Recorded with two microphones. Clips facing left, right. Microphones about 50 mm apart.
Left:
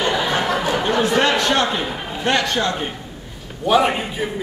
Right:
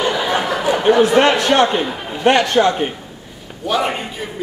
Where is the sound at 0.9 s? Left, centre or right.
Centre.